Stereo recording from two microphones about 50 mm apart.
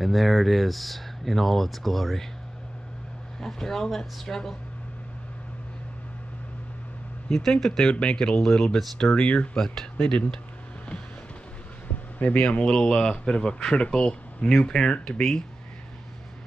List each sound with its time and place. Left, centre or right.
0.0 s speech: centre
3.3 s speech: centre
7.2 s speech: centre
9.1 s speech: left
12.4 s speech: centre